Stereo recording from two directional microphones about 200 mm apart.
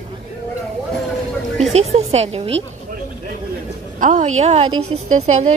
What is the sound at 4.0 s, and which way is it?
A woman's voice, 40° right (ahead or behind).